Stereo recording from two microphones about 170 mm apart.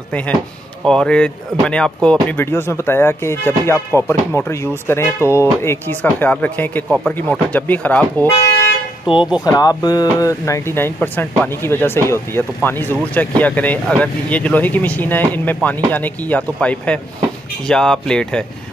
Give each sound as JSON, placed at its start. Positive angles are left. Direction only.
{"t": 0.8, "sound": "speech", "side_deg": 5}
{"t": 9.1, "sound": "speech", "side_deg": 30}